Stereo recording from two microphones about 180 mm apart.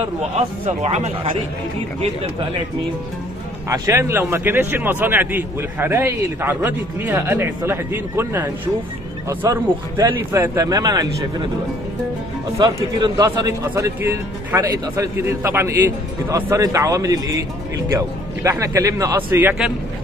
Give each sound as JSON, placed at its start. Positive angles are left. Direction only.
{"t": 0.4, "sound": "speech", "side_deg": -35}
{"t": 3.6, "sound": "a man's voice", "side_deg": -15}
{"t": 12.5, "sound": "a man's voice", "side_deg": -20}